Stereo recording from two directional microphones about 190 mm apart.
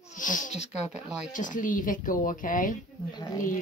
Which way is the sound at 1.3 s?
45° left (ahead or behind).